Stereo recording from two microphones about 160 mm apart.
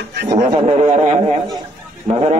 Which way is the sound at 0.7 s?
40° right (ahead or behind).